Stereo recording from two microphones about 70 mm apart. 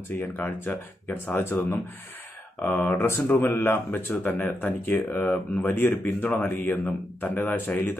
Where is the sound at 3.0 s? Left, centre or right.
Left.